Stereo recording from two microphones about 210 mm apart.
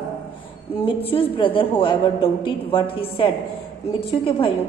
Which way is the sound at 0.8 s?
25° left (ahead or behind).